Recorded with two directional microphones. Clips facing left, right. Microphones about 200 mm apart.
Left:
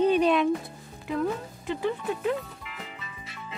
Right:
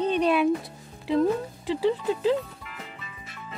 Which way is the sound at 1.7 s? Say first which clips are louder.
Right 4 dB; 30° right (ahead or behind).